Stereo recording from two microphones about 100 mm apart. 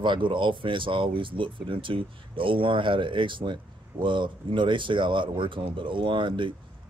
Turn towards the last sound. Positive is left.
turn(degrees=-55)  # may be behind; listen again after turning